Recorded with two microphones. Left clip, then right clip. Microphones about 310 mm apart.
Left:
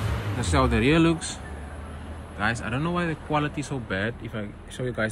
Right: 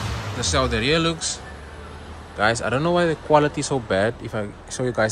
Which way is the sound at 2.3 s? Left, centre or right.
Centre.